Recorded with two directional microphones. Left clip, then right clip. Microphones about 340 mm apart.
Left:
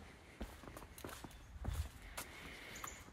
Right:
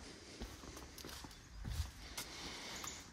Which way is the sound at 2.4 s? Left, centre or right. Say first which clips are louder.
Right 3 dB; centre.